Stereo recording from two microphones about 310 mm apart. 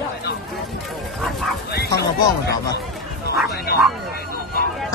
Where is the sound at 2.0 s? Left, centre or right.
Left.